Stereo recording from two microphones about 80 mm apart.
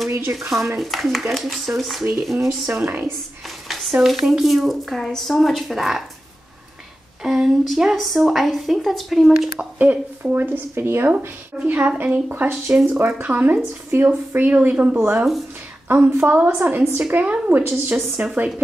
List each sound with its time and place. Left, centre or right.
0.1 s speech: right
0.7 s speech: centre
2.7 s speech: right
3.6 s speech: centre
7.2 s speech: centre
9.6 s a woman's voice: centre